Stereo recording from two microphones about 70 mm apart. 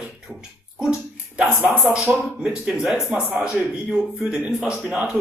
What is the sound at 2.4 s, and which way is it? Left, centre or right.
Speech, centre.